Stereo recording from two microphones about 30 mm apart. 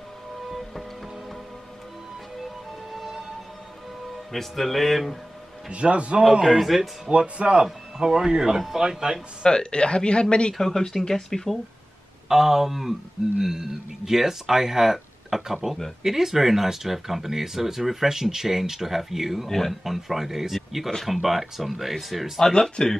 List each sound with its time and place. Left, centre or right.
2.9 s music: centre
4.3 s speech: centre
5.7 s a man's voice: right
6.6 s speech: centre
7.1 s a man's voice: right
8.0 s speech: right
8.5 s speech: centre
9.4 s speech: left
10.9 s speech: centre
12.3 s speech: centre
19.4 s speech: centre
19.8 s speech: centre
22.5 s speech: left